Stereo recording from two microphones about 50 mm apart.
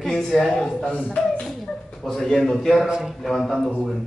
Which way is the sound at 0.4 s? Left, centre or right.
Centre.